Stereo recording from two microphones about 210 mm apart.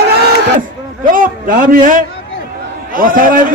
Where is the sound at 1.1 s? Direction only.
40° right (ahead or behind).